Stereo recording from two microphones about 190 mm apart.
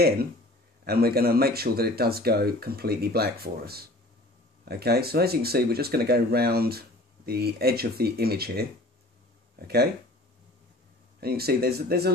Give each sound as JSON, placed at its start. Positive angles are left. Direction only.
{"t": 0.8, "sound": "speech", "side_deg": -55}
{"t": 11.1, "sound": "speech", "side_deg": -55}